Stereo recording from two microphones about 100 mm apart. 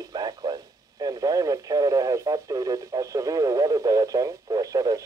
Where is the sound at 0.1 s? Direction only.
45° right (ahead or behind).